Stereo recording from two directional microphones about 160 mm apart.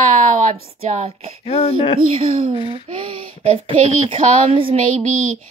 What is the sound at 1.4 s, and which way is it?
Speech, 40° left (ahead or behind).